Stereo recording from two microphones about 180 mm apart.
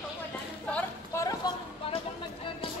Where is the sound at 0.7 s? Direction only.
15° left (ahead or behind).